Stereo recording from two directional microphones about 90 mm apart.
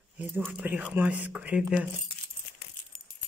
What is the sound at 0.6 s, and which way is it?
Speech, 15° right (ahead or behind).